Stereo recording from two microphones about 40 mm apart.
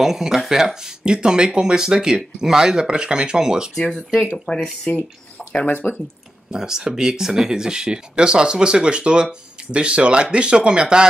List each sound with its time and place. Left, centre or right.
0.0 s a sound: centre
0.5 s speech: centre
3.7 s speech: centre
4.5 s speech: left
4.9 s speech: left
6.5 s speech: centre